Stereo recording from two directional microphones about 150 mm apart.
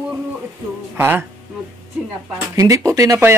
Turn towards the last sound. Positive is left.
turn(degrees=-20)  # may be behind; listen again after turning